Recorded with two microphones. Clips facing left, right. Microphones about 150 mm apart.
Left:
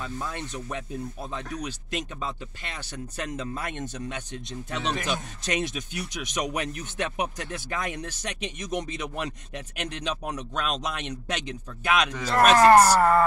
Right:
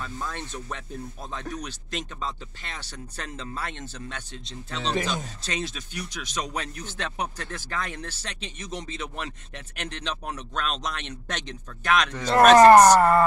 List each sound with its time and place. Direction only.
0.0 s speech: 10° left (ahead or behind)